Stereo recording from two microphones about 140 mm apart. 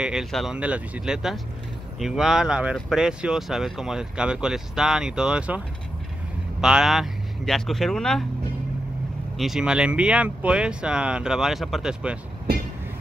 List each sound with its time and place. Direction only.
0.0 s speech: 5° right (ahead or behind)
6.6 s speech: 5° right (ahead or behind)
9.4 s speech: 5° right (ahead or behind)
12.5 s train: 90° right